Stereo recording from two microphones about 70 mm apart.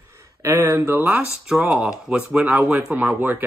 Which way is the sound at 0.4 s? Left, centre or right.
Right.